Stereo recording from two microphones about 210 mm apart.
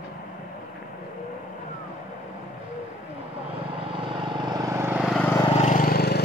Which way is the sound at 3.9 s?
25° right (ahead or behind).